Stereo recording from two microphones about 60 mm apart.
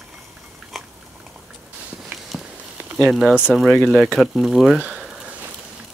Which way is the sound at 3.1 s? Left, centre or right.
Centre.